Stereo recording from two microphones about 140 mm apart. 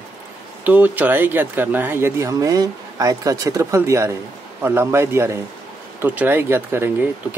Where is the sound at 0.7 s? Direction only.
10° right (ahead or behind).